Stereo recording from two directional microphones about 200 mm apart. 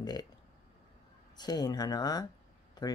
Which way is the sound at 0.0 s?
20° left (ahead or behind).